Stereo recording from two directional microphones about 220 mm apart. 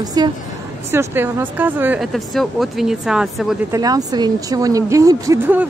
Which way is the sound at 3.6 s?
15° right (ahead or behind).